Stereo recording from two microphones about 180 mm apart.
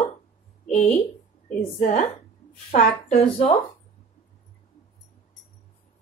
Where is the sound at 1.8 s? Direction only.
45° left (ahead or behind).